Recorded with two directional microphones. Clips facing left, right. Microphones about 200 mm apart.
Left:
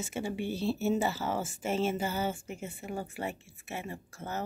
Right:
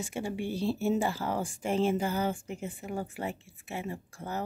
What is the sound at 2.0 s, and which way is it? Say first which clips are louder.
Speech: right 2 dB; 5° left (ahead or behind).